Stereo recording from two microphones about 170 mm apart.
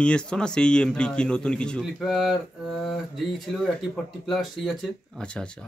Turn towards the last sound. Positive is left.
turn(degrees=5)  # may be behind; listen again after turning